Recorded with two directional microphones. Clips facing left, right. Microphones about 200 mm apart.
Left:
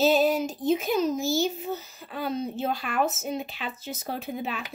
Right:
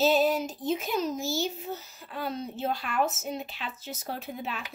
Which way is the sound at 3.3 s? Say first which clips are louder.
Left 3 dB; 5° left (ahead or behind).